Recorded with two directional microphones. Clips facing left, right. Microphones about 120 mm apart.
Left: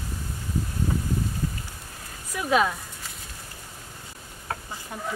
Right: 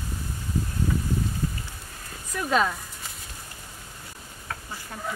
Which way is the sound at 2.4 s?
5° left (ahead or behind).